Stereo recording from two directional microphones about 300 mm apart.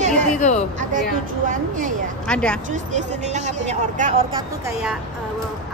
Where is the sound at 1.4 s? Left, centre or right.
Right.